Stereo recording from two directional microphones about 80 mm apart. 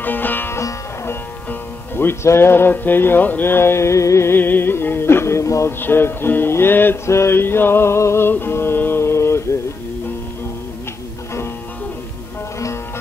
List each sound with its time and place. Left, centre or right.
0.0 s music: left
0.6 s sitar: left
1.5 s music: left